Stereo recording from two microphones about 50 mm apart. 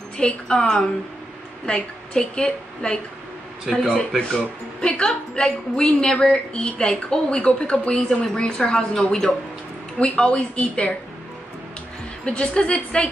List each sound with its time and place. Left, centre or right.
0.2 s speech: centre
3.7 s speech: centre
4.8 s speech: centre
9.9 s speech: left
12.3 s speech: left